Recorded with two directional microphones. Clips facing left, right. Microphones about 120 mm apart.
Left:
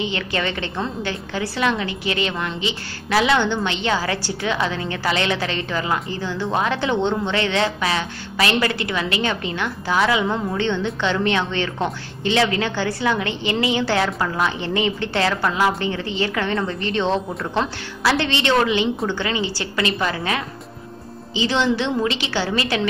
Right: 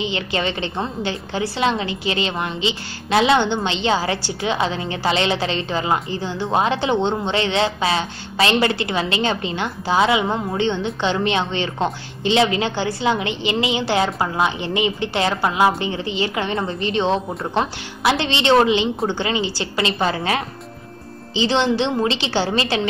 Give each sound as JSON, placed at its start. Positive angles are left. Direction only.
{"t": 0.0, "sound": "a woman's voice", "side_deg": -25}